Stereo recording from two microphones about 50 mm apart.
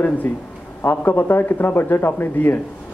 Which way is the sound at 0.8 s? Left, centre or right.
Left.